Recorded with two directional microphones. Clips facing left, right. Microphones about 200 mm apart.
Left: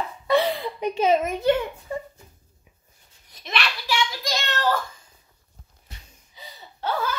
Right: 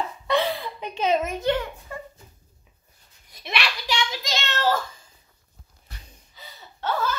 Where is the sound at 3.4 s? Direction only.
10° right (ahead or behind).